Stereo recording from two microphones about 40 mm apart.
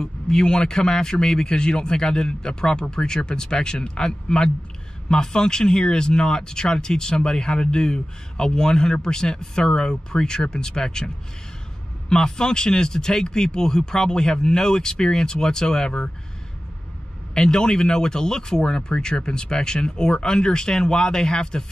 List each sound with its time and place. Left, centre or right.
0.0 s speech: centre
12.1 s speech: centre
17.3 s speech: centre